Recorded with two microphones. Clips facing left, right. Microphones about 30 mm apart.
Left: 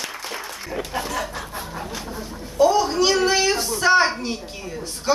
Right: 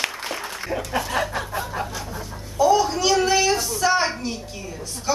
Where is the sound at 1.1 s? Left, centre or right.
Right.